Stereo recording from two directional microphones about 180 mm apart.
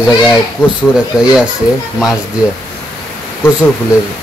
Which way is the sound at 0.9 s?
5° right (ahead or behind).